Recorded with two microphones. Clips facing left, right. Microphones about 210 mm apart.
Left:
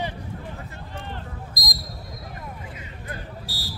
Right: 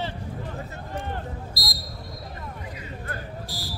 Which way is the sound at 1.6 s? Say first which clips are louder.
Right 1 dB; 20° left (ahead or behind).